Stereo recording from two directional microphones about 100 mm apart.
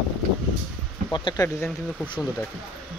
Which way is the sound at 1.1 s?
50° left (ahead or behind).